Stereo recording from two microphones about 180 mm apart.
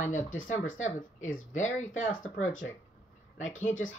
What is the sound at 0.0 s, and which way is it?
Speech, 45° left (ahead or behind).